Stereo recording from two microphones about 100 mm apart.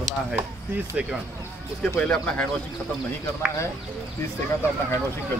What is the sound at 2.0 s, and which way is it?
Speech, 10° left (ahead or behind).